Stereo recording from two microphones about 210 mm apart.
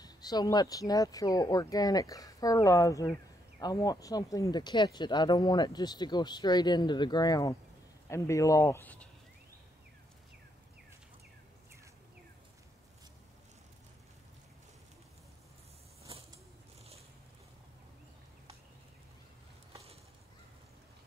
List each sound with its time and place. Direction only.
0.0 s speech: 20° left (ahead or behind)
16.0 s creak: 30° right (ahead or behind)